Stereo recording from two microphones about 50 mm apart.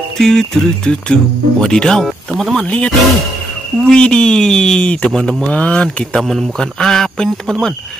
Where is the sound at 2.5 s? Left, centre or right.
Left.